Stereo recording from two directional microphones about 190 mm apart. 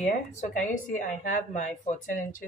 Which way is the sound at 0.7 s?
40° left (ahead or behind).